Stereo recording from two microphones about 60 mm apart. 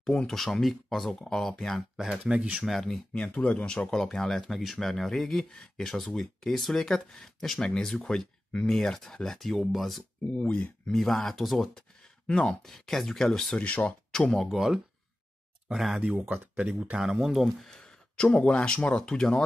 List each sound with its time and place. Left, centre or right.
0.3 s speech: centre
2.2 s speech: centre
2.5 s speech: centre
3.1 s speech: centre
10.4 s speech: centre
10.9 s speech: centre
12.3 s speech: centre
12.6 s speech: centre
13.6 s speech: left
14.1 s speech: centre
14.5 s speech: centre